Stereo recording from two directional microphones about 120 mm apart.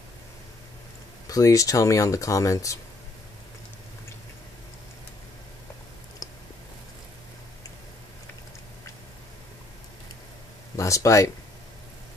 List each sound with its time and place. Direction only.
1.3 s speech: 30° left (ahead or behind)
6.2 s a sound: 30° left (ahead or behind)
10.8 s speech: 25° left (ahead or behind)